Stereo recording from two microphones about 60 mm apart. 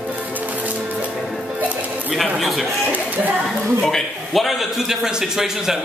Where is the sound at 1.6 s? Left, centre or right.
Right.